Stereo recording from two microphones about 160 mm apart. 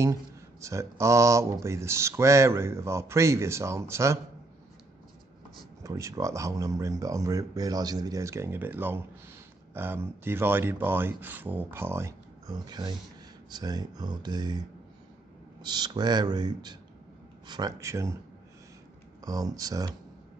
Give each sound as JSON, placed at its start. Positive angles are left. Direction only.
{"t": 0.6, "sound": "speech", "side_deg": -20}
{"t": 5.9, "sound": "speech", "side_deg": -20}
{"t": 15.6, "sound": "speech", "side_deg": -25}
{"t": 19.2, "sound": "speech", "side_deg": -20}